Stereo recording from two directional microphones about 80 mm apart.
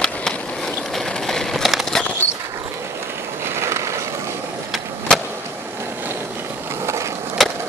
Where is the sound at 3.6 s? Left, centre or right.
Right.